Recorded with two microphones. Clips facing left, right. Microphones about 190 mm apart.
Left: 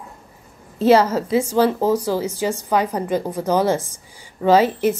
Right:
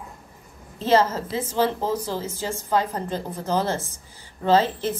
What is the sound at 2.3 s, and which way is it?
A woman's voice, 15° left (ahead or behind).